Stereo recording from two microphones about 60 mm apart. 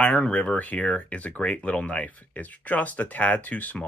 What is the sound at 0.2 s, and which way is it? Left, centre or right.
Speech, centre.